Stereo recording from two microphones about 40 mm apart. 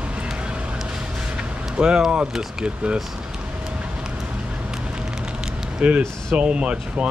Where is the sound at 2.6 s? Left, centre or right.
Right.